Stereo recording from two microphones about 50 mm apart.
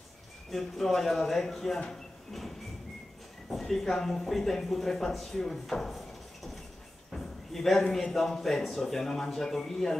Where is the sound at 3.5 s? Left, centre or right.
Centre.